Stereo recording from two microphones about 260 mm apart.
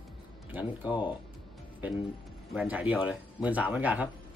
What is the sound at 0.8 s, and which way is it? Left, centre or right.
Speech, centre.